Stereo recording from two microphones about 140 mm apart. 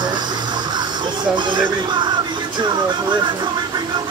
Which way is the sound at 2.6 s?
35° right (ahead or behind).